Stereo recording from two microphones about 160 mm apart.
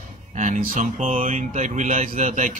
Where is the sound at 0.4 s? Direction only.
55° right (ahead or behind).